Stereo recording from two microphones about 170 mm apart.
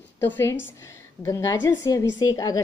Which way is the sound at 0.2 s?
15° left (ahead or behind).